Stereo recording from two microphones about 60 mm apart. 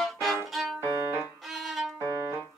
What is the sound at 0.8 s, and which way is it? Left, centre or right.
Music, right.